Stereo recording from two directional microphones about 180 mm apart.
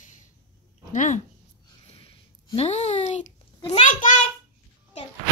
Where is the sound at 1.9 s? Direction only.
30° left (ahead or behind).